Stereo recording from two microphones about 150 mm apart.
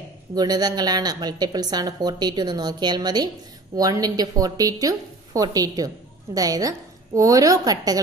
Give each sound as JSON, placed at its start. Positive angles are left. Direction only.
{"t": 0.3, "sound": "a woman's voice", "side_deg": -25}